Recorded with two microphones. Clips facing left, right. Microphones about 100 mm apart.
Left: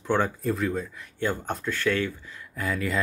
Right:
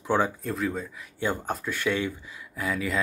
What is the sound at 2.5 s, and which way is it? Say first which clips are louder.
Speech: even; 5° right (ahead or behind).